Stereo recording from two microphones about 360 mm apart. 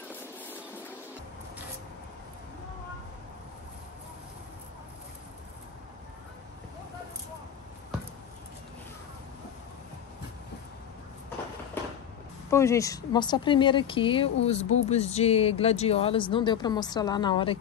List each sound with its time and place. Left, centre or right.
12.4 s speech: centre